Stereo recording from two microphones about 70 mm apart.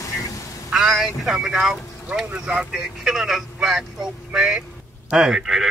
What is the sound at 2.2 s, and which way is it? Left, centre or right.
Speech, centre.